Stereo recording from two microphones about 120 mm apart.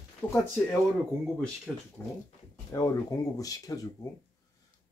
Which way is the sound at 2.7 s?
30° left (ahead or behind).